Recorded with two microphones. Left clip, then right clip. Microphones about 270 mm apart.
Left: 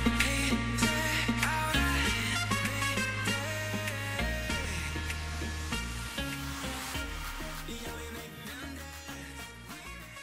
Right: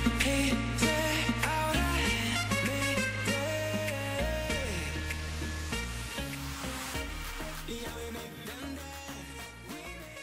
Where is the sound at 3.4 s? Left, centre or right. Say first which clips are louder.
Right 3 dB; left.